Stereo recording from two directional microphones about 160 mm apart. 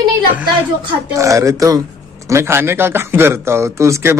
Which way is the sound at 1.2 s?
20° right (ahead or behind).